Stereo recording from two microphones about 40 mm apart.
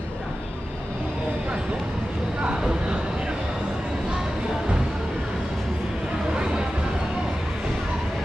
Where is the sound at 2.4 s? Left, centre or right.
Right.